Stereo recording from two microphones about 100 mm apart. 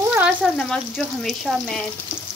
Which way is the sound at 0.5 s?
10° left (ahead or behind).